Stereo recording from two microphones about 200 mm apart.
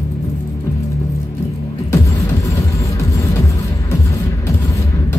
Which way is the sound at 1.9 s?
15° left (ahead or behind).